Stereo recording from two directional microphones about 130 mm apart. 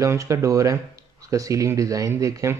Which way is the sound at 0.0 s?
25° right (ahead or behind).